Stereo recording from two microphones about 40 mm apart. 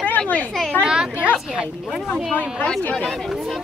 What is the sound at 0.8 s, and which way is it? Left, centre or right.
Speech, right.